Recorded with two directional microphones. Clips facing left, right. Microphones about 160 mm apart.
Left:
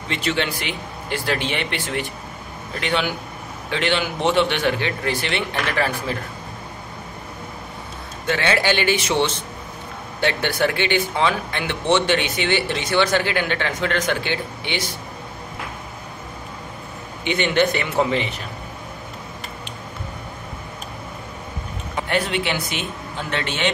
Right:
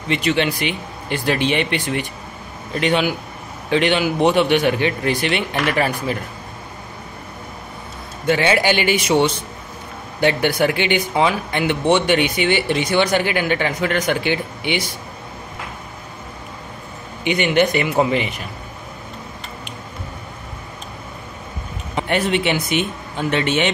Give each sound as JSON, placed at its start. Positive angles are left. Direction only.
{"t": 0.1, "sound": "speech", "side_deg": -15}
{"t": 8.3, "sound": "speech", "side_deg": -15}
{"t": 17.2, "sound": "speech", "side_deg": -15}
{"t": 21.9, "sound": "speech", "side_deg": -20}